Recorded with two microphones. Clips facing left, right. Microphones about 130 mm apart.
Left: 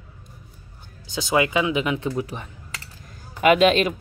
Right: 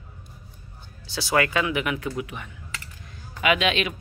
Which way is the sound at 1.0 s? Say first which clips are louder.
Left 2 dB; 20° left (ahead or behind).